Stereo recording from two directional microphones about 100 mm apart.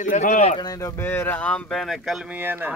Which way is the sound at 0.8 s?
25° left (ahead or behind).